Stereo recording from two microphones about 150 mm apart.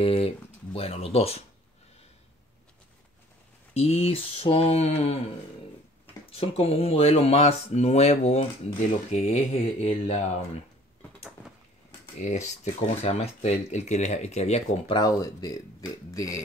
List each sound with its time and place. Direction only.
0.0 s speech: 40° left (ahead or behind)
3.7 s speech: 40° left (ahead or behind)
6.3 s speech: 40° left (ahead or behind)
12.2 s speech: 50° left (ahead or behind)
15.0 s speech: 25° left (ahead or behind)